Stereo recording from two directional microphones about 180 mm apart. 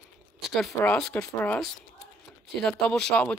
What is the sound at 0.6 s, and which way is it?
Speech, 5° left (ahead or behind).